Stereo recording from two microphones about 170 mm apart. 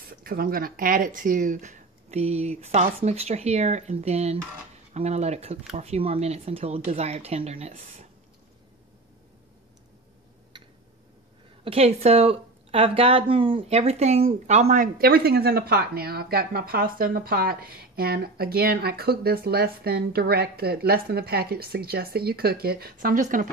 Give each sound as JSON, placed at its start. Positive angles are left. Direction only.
{"t": 0.2, "sound": "speech", "side_deg": -60}
{"t": 10.5, "sound": "tick-tock", "side_deg": -25}
{"t": 11.6, "sound": "a woman's voice", "side_deg": -35}